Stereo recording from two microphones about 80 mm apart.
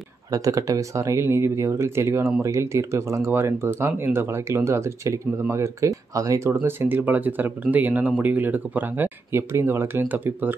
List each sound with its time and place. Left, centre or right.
0.3 s speech: right